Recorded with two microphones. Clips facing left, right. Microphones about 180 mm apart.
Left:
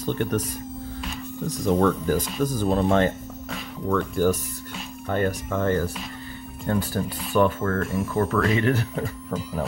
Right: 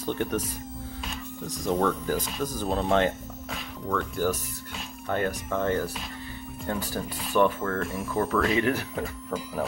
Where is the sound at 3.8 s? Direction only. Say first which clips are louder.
Left 5 dB; 15° left (ahead or behind).